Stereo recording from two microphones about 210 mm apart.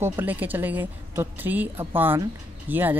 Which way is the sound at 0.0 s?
10° right (ahead or behind).